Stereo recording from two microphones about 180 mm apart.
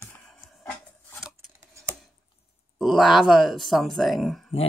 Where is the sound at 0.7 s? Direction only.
5° left (ahead or behind).